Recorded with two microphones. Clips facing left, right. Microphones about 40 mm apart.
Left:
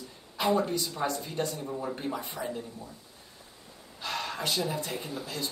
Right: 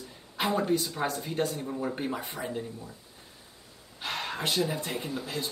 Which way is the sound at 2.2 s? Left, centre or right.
Centre.